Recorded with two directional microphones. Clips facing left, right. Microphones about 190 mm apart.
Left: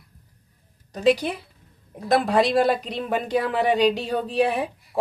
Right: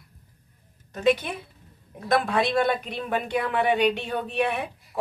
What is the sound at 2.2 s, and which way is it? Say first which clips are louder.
Speech: left 4 dB; 35° left (ahead or behind).